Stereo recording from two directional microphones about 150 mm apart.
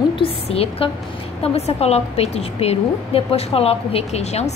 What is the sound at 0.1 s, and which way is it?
A woman's voice, 40° left (ahead or behind).